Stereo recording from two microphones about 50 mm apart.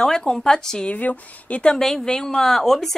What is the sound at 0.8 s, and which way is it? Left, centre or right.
Speech, left.